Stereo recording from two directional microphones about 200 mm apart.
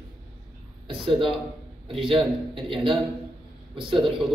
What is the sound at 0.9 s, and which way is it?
Speech, 25° right (ahead or behind).